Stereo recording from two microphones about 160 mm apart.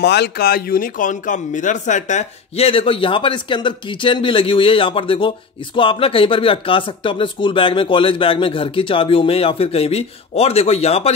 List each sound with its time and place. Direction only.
0.0 s speech: 90° left; by 11.1 s 40° left (ahead or behind)